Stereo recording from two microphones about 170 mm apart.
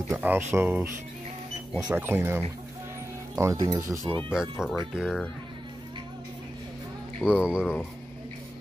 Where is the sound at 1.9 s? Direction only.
15° right (ahead or behind).